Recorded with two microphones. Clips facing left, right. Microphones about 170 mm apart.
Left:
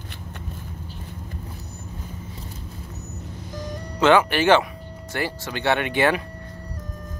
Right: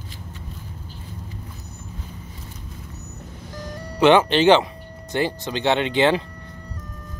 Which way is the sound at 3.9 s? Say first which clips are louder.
Right 2 dB; 20° right (ahead or behind).